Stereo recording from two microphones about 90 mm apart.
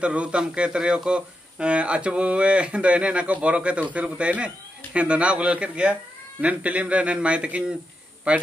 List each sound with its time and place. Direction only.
0.0 s a man's voice: 15° right (ahead or behind)